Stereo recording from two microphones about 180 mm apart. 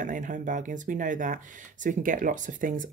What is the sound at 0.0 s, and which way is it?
Speech, 45° right (ahead or behind).